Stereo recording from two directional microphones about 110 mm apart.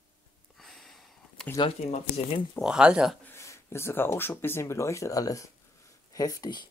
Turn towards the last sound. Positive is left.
turn(degrees=40)  # may be behind; listen again after turning